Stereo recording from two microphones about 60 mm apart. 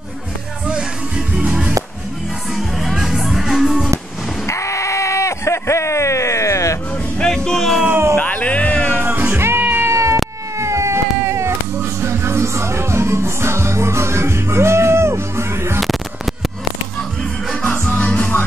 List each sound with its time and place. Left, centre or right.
1.4 s music: right
2.5 s music: centre
4.5 s a sound: left
7.2 s music: centre
7.9 s a sound: right
8.2 s music: left
9.0 s music: right
9.6 s cat: right
9.8 s cat: right
17.5 s music: centre
17.8 s music: left